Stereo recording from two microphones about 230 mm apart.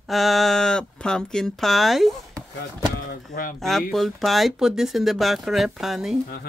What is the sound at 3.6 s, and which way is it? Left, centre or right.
Speech, centre.